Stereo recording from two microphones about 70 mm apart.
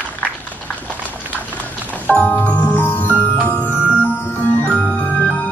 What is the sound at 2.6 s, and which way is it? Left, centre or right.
Music, left.